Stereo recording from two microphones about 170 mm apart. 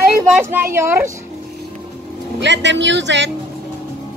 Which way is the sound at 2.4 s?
90° right.